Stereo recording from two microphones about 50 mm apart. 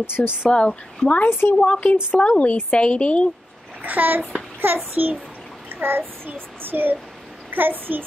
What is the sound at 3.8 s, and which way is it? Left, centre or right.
Child singing, right.